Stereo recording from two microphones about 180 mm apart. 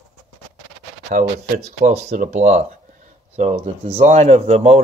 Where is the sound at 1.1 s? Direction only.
40° right (ahead or behind).